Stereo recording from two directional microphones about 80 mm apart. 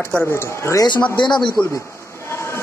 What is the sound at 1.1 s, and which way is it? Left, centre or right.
Speech, left.